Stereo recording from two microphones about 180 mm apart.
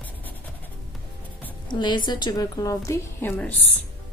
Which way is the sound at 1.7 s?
25° left (ahead or behind).